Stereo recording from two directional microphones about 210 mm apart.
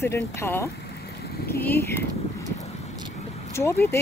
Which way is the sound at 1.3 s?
50° left (ahead or behind).